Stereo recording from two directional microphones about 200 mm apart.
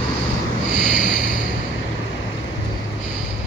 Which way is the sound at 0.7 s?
40° left (ahead or behind).